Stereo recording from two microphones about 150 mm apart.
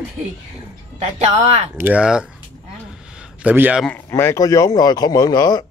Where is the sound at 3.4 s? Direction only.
10° right (ahead or behind).